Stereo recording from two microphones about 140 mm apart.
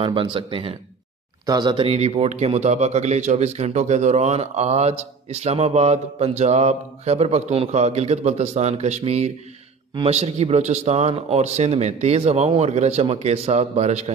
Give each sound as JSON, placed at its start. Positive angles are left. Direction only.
{"t": 0.0, "sound": "speech", "side_deg": -40}
{"t": 1.9, "sound": "speech", "side_deg": -50}